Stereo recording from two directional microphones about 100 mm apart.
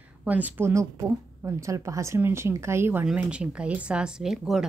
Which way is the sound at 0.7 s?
30° right (ahead or behind).